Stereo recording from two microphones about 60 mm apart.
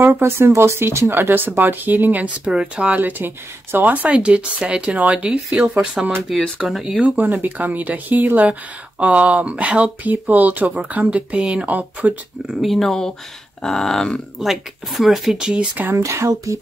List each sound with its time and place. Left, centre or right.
0.0 s speech: right
2.2 s speech: centre
6.3 s speech: centre
7.0 s speech: right
12.6 s speech: centre
13.6 s a sound: centre
14.4 s speech: centre
15.9 s speech: right